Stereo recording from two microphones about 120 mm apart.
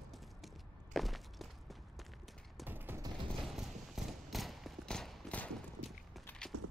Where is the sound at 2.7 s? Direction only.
15° right (ahead or behind).